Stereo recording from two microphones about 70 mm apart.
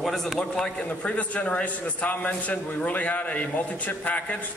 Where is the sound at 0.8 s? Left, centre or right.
Left.